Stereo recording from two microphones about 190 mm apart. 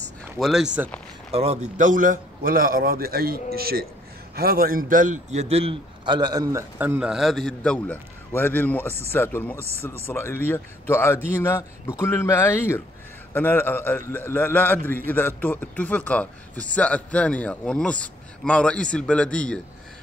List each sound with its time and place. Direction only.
0.4 s speech: centre (ahead or behind)
1.3 s a man's voice: 35° right (ahead or behind); by 19.6 s 5° left (ahead or behind)